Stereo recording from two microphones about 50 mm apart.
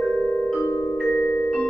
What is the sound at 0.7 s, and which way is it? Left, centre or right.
Music, left.